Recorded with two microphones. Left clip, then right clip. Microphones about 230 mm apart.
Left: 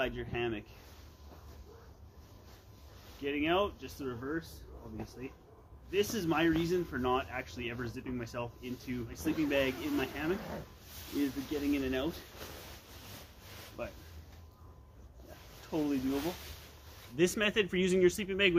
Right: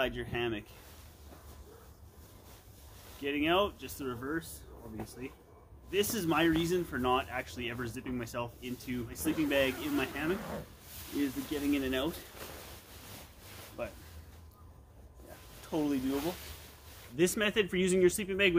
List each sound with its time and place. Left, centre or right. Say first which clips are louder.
0.0 s speech: right 2 dB; right
3.2 s speech: right 2 dB; right
11.5 s speech: right 1 dB; centre
13.8 s speech: right 2 dB; centre
15.7 s speech: right 1 dB; right
17.2 s speech: even; centre